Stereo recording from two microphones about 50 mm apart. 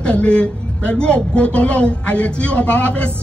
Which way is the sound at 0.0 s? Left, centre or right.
Left.